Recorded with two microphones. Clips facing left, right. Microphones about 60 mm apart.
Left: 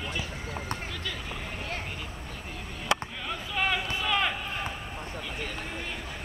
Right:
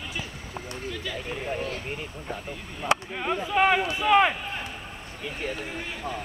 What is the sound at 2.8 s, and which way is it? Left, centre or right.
Speech, right.